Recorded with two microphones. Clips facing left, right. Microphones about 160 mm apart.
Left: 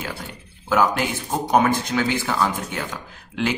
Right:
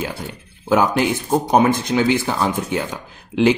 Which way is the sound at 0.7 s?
20° right (ahead or behind).